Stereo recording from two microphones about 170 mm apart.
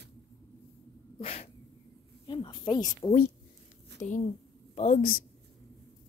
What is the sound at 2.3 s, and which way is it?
Speech, 25° left (ahead or behind).